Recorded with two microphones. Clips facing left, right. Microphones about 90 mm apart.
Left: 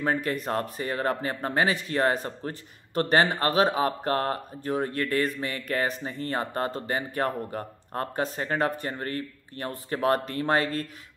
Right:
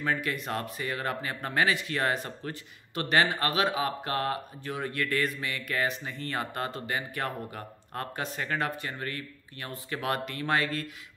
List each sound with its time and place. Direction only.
0.0 s speech: 35° left (ahead or behind)